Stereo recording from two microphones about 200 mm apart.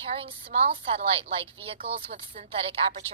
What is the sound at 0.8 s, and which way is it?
A woman's voice, 30° right (ahead or behind).